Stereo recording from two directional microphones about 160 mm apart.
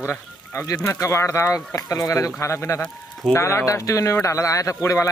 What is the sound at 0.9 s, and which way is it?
Speech, 20° left (ahead or behind).